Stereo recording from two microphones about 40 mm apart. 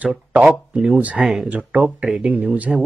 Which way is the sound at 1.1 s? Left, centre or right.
Centre.